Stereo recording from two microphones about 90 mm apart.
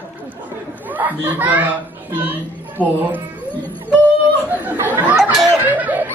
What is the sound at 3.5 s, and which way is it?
Music, 20° left (ahead or behind).